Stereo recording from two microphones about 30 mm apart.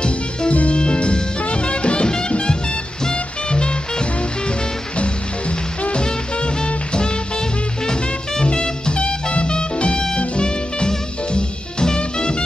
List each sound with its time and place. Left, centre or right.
0.5 s music: left
5.9 s swing music: left
7.8 s music: left